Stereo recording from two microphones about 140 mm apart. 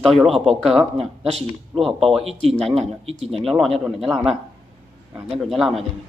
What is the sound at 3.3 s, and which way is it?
Speech, centre (ahead or behind).